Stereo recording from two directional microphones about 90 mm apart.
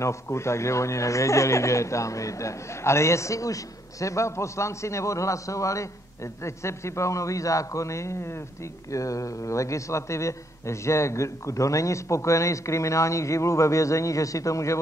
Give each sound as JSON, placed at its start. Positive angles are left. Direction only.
{"t": 0.0, "sound": "speech", "side_deg": 30}